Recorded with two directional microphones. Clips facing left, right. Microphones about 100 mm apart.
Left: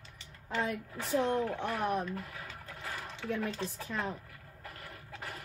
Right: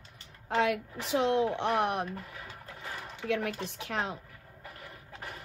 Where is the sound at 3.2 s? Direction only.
80° right.